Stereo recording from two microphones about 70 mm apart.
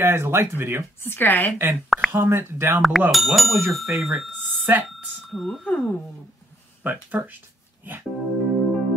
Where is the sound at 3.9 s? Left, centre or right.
Right.